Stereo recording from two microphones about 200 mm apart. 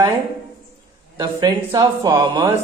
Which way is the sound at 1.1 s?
20° right (ahead or behind).